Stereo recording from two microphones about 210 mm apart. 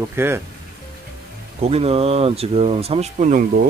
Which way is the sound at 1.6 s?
30° right (ahead or behind).